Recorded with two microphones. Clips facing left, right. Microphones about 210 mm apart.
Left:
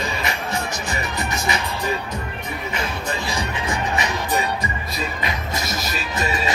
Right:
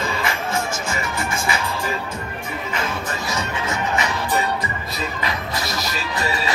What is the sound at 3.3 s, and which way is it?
Music, 15° left (ahead or behind).